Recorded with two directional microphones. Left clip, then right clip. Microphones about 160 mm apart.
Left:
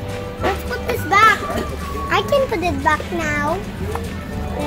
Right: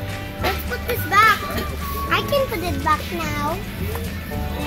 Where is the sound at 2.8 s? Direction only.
20° left (ahead or behind).